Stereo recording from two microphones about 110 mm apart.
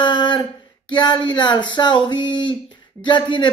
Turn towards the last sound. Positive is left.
turn(degrees=45)  # may be behind; listen again after turning